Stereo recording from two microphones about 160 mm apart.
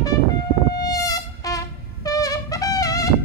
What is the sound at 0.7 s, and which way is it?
Mosquito, 20° left (ahead or behind).